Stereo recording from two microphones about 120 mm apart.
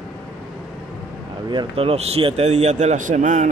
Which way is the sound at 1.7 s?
55° right (ahead or behind).